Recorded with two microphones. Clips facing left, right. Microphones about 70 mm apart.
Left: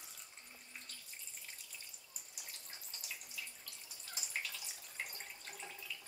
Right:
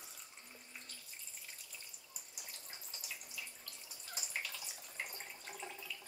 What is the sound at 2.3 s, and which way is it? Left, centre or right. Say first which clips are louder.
Water: even; centre.